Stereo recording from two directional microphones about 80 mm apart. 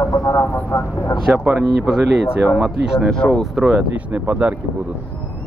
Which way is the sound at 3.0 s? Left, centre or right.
Centre.